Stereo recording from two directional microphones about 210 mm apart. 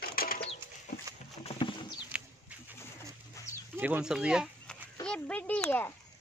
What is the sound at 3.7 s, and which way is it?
A child's voice, 10° right (ahead or behind).